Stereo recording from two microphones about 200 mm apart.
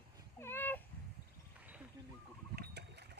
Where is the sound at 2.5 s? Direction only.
55° right (ahead or behind).